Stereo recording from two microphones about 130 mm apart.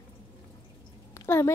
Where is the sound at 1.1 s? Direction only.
20° left (ahead or behind).